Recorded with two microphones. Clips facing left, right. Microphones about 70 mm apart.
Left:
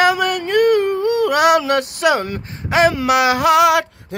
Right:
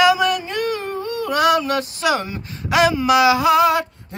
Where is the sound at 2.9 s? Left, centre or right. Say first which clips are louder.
Right 1 dB; left.